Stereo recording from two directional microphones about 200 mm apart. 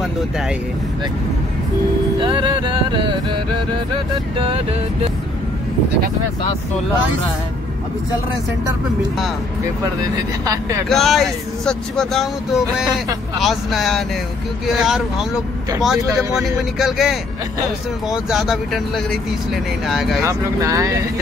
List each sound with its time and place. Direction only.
2.1 s music: 25° right (ahead or behind)
10.4 s speech: 15° right (ahead or behind)
10.9 s speech: centre (ahead or behind)
13.4 s speech: centre (ahead or behind)
19.9 s speech: centre (ahead or behind)
20.2 s speech: 15° right (ahead or behind)